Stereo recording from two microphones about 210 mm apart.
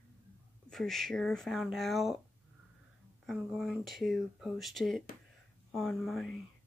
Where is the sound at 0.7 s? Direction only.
Centre (ahead or behind).